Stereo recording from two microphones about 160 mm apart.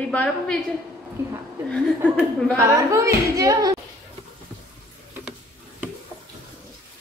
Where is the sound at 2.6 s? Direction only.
20° right (ahead or behind).